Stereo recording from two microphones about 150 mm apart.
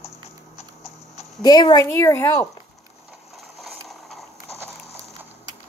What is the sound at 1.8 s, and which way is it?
Speech, 15° left (ahead or behind).